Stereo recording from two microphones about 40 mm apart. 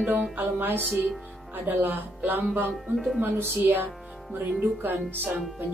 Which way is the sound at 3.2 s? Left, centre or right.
Right.